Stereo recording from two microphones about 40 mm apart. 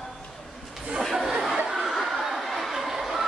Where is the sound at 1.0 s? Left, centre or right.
Centre.